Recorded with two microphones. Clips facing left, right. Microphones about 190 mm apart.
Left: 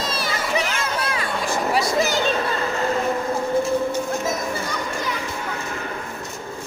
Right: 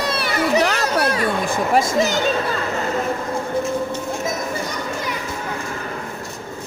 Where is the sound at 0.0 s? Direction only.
65° right (ahead or behind).